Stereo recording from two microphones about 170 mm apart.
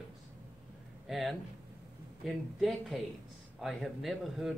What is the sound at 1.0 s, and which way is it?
A man's voice, centre (ahead or behind).